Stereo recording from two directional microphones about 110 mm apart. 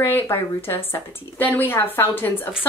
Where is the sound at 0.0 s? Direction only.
20° left (ahead or behind).